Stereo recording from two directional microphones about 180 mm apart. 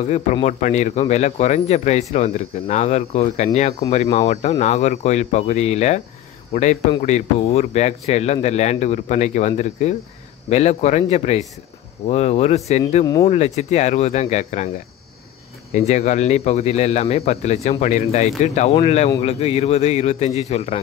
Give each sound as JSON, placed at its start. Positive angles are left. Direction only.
{"t": 0.1, "sound": "speech", "side_deg": 40}
{"t": 15.9, "sound": "speech", "side_deg": 40}